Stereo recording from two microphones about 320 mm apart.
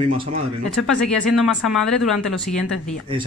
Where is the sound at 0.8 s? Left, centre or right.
Centre.